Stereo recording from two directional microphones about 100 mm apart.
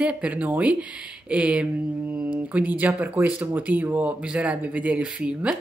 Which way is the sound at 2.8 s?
20° right (ahead or behind).